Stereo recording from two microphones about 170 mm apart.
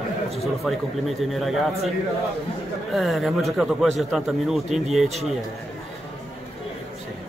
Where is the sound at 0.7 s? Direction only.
Centre (ahead or behind).